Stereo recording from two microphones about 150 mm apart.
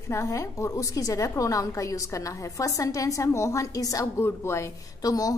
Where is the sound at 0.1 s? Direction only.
20° left (ahead or behind).